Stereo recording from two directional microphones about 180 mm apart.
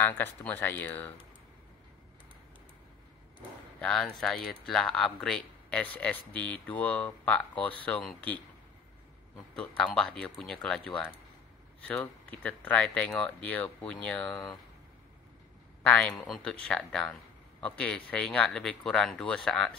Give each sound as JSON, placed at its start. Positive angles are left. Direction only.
{"t": 0.0, "sound": "speech", "side_deg": 10}
{"t": 3.8, "sound": "speech", "side_deg": 5}
{"t": 9.6, "sound": "speech", "side_deg": 5}
{"t": 11.8, "sound": "speech", "side_deg": 10}
{"t": 15.8, "sound": "speech", "side_deg": 5}